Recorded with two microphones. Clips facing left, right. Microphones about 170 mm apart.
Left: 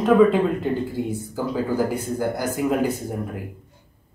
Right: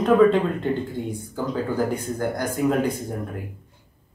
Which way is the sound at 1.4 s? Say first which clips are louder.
Left 1 dB; 10° left (ahead or behind).